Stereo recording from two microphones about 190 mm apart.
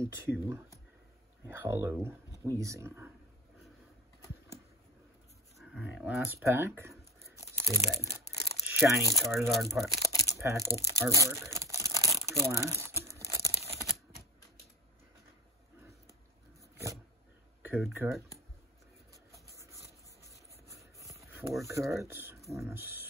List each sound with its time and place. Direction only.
0.0 s speech: 15° right (ahead or behind)
5.6 s speech: 5° right (ahead or behind)
7.5 s crumpling: 15° right (ahead or behind)
9.1 s speech: centre (ahead or behind)
10.3 s speech: 15° right (ahead or behind)
11.5 s crumpling: 15° right (ahead or behind)
13.5 s tearing: 30° right (ahead or behind)
16.7 s roaring cats: 15° right (ahead or behind)
17.6 s speech: 5° right (ahead or behind)
20.7 s a sound: 15° right (ahead or behind)
21.6 s speech: 15° right (ahead or behind)